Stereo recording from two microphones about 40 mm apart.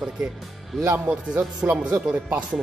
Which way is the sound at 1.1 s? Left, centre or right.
Right.